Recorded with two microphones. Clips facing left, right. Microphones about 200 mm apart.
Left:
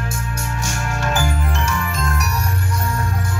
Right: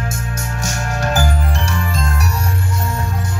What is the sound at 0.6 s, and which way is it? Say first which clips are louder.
Music: right 3 dB; 40° right (ahead or behind).